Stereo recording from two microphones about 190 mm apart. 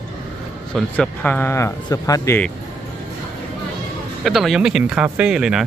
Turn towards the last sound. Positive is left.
turn(degrees=-5)  # may be behind; listen again after turning